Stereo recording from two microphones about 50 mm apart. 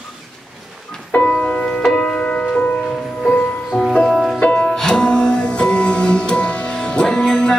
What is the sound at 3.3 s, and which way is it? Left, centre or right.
Music, centre.